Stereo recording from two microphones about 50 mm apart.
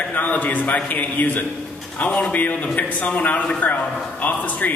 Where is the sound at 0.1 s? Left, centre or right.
Left.